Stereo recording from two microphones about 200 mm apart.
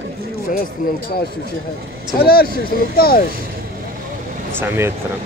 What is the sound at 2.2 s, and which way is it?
Speech, 50° left (ahead or behind).